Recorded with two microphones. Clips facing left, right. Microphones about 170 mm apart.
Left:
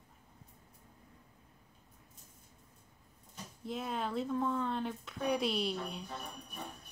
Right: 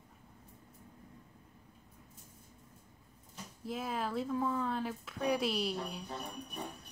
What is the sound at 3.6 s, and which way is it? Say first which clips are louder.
Speech: even; 5° right (ahead or behind).